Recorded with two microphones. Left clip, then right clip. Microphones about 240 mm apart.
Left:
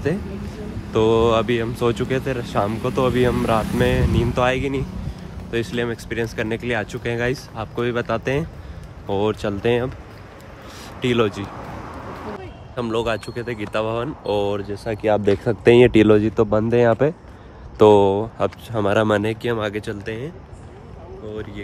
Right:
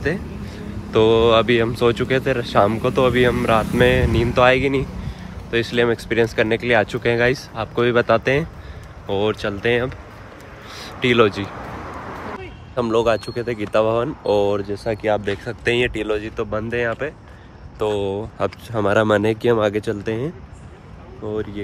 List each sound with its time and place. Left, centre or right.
0.9 s speech: centre
10.8 s a sound: centre
12.7 s speech: centre; by 18.0 s left
18.0 s speech: centre
20.0 s speech: centre